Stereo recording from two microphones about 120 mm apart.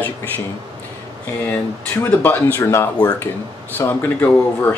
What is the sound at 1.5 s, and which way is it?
Speech, 15° left (ahead or behind).